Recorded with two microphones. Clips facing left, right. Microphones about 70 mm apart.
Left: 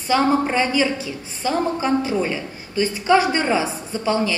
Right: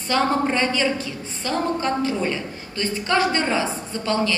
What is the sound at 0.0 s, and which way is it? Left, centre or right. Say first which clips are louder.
A woman's voice: left 3 dB; centre.